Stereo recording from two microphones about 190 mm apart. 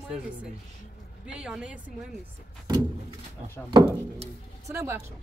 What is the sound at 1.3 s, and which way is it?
Speech, 5° right (ahead or behind).